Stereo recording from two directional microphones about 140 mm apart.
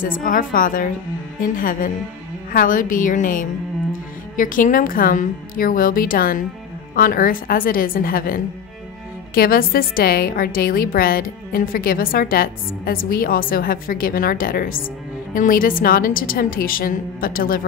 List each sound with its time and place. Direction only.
0.0 s a woman's voice: 75° left (ahead or behind); by 17.6 s 90° left